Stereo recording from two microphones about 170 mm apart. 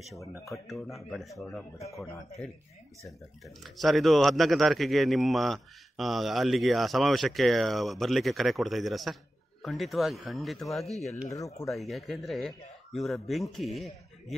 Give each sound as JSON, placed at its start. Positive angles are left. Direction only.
{"t": 0.5, "sound": "speech", "side_deg": 0}
{"t": 3.1, "sound": "speech", "side_deg": 0}
{"t": 11.2, "sound": "speech", "side_deg": 20}
{"t": 11.7, "sound": "speech", "side_deg": 0}